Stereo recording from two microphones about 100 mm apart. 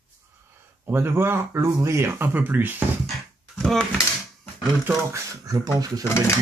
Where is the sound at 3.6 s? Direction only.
5° left (ahead or behind).